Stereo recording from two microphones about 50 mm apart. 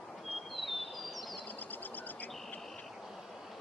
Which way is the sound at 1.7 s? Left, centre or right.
Left.